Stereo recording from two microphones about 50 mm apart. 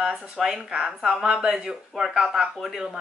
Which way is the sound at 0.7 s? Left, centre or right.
Centre.